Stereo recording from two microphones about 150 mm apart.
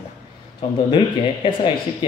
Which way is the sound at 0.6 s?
35° left (ahead or behind).